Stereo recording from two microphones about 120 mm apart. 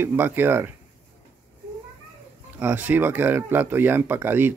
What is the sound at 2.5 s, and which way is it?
Speech, 10° right (ahead or behind).